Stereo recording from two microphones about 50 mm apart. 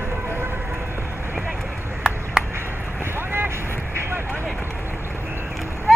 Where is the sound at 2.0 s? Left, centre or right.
Centre.